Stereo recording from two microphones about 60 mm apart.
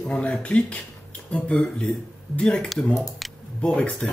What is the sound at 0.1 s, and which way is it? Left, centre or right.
Speech, centre.